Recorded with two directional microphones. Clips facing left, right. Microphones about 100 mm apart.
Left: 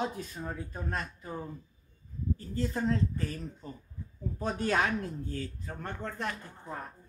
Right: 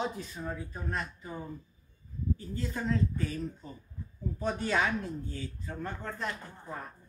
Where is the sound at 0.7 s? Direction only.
45° left (ahead or behind).